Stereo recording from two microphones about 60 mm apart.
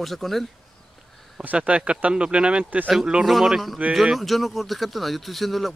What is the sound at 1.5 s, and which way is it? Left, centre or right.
Speech, centre.